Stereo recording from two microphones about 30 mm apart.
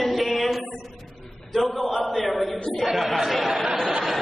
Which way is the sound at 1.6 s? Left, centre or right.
Centre.